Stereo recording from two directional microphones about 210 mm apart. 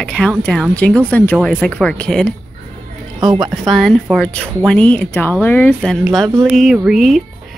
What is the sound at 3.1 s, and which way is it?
Speech, 15° right (ahead or behind).